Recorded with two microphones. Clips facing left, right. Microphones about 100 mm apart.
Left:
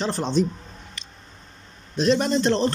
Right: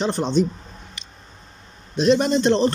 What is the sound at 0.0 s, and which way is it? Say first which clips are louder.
Speech: right 3 dB; centre (ahead or behind).